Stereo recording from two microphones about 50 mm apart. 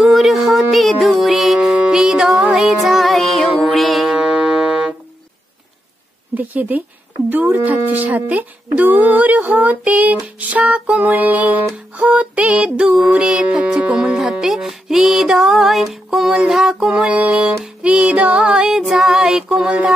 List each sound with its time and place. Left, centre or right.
0.0 s music: centre
2.0 s music: centre
6.3 s speech: right
12.4 s music: right
16.8 s music: right